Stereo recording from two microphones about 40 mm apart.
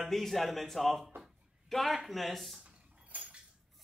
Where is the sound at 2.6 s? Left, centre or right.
Right.